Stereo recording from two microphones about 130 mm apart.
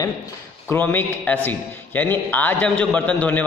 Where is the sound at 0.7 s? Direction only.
15° left (ahead or behind).